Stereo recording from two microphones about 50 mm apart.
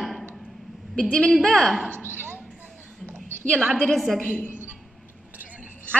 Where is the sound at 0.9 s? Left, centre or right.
Centre.